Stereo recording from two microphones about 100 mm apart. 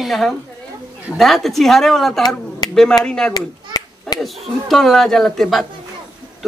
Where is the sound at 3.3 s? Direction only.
40° left (ahead or behind).